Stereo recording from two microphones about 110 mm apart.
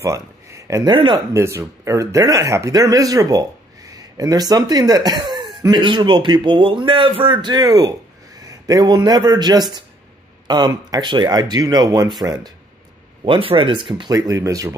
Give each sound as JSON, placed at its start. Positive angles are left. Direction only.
{"t": 0.0, "sound": "a sound", "side_deg": -30}
{"t": 0.8, "sound": "a man's voice", "side_deg": -45}
{"t": 1.3, "sound": "a man's voice", "side_deg": -25}
{"t": 7.5, "sound": "speech", "side_deg": -35}
{"t": 13.2, "sound": "a man's voice", "side_deg": -55}
{"t": 14.1, "sound": "speech", "side_deg": -30}